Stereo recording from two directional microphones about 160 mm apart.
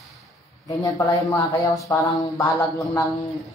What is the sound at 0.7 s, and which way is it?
Speech, 20° left (ahead or behind).